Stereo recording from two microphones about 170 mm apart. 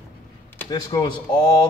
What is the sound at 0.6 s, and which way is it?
Speech, 25° left (ahead or behind).